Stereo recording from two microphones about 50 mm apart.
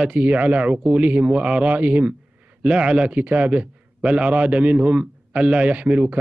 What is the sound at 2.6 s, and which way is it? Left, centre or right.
A man's voice, right.